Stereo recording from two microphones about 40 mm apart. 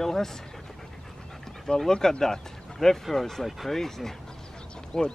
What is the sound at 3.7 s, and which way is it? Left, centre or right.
Speech, centre.